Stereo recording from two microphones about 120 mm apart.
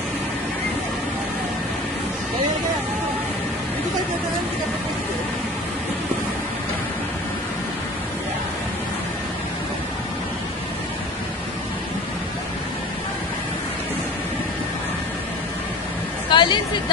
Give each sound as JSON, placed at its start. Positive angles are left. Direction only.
{"t": 16.3, "sound": "hubbub", "side_deg": 40}